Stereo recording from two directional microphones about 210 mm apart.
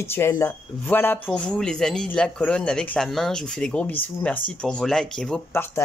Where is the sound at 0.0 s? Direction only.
10° left (ahead or behind).